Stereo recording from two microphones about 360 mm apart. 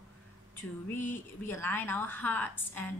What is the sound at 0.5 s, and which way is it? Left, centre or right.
A woman's voice, centre.